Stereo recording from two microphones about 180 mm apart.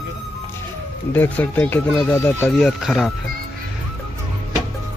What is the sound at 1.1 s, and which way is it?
Speech, 10° left (ahead or behind).